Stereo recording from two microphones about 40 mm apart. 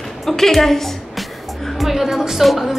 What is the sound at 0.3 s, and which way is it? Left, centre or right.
Speech, centre.